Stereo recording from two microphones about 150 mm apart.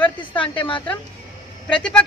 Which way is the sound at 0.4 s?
35° left (ahead or behind).